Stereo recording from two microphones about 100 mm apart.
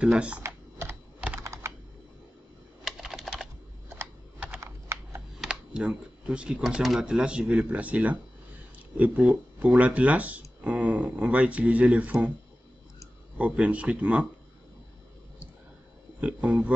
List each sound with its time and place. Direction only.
0.0 s speech: 10° right (ahead or behind)
0.4 s computer keyboard: 30° right (ahead or behind)
2.8 s typing: 5° right (ahead or behind)
4.0 s typing: 20° right (ahead or behind)
4.6 s computer keyboard: 25° right (ahead or behind)
5.4 s speech: 10° right (ahead or behind)
13.4 s speech: 15° right (ahead or behind)
16.2 s speech: 15° right (ahead or behind)